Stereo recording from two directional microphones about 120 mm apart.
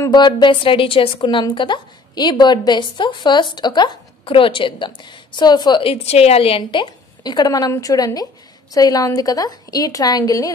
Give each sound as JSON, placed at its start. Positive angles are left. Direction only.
{"t": 0.1, "sound": "a woman's voice", "side_deg": 40}